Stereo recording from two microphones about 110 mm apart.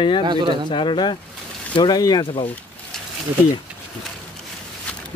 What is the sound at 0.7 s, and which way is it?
A man's voice, 50° left (ahead or behind).